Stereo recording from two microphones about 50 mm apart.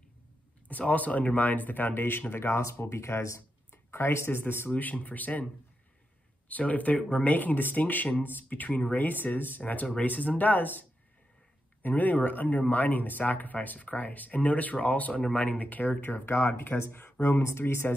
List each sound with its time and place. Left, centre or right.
0.7 s speech: left
3.9 s speech: left
4.3 s speech: left
4.7 s speech: left
6.5 s speech: left
16.3 s speech: left